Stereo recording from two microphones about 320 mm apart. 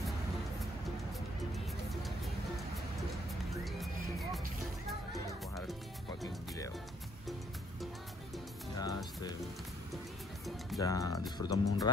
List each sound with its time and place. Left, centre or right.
1.9 s music: centre
3.6 s music: centre
8.7 s music: centre
10.8 s music: centre